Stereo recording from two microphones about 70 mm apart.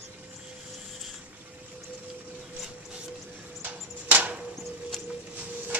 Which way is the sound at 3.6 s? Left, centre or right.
Right.